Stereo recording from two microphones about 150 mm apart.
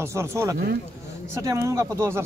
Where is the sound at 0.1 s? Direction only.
20° right (ahead or behind).